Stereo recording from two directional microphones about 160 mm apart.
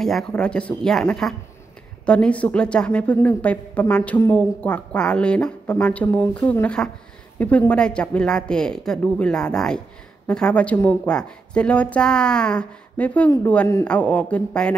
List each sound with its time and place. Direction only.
0.0 s a woman's voice: centre (ahead or behind)